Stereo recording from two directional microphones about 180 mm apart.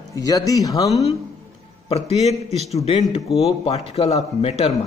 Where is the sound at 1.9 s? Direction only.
35° left (ahead or behind).